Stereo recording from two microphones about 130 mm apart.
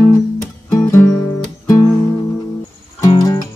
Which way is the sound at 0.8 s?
20° left (ahead or behind).